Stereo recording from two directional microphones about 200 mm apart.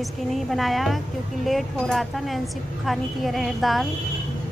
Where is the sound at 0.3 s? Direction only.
Centre (ahead or behind).